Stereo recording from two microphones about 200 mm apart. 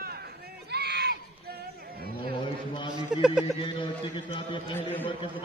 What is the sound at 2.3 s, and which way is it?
Speech, 25° left (ahead or behind).